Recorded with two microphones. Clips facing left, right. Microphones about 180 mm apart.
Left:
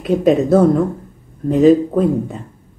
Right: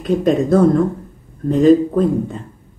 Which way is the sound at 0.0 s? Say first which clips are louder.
Left 2 dB; 5° left (ahead or behind).